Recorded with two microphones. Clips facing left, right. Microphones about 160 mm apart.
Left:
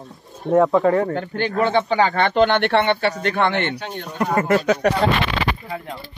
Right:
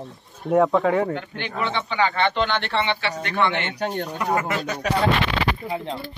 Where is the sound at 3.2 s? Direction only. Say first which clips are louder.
Left 3 dB; 50° left (ahead or behind).